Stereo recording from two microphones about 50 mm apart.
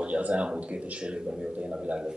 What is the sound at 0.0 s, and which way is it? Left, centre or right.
A man's voice, right.